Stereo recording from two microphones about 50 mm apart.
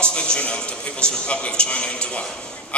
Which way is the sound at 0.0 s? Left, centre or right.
Centre.